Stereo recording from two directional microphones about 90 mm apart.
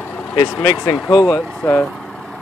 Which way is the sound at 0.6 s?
35° left (ahead or behind).